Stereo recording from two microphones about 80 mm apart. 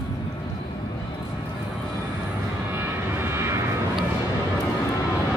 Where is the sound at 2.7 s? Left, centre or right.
Right.